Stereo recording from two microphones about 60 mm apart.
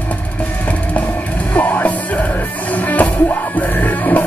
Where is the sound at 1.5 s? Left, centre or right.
Left.